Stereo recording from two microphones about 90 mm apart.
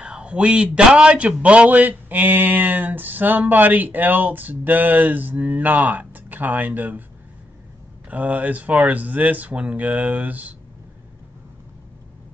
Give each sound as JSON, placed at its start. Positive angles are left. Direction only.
{"t": 0.0, "sound": "a man's voice", "side_deg": -10}
{"t": 8.1, "sound": "speech", "side_deg": -15}